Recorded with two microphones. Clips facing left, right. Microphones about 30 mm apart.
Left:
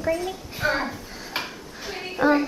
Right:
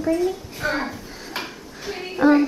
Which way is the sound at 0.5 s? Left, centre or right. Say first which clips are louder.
Even; centre.